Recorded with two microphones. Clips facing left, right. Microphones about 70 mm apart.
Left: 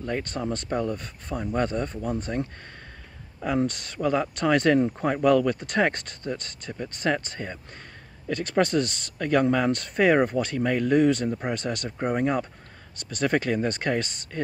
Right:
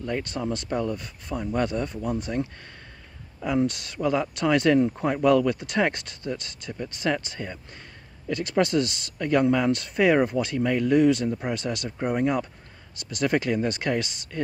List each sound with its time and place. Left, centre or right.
0.0 s speech: left